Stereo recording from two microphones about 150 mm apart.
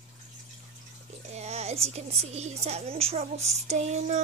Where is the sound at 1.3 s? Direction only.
45° right (ahead or behind).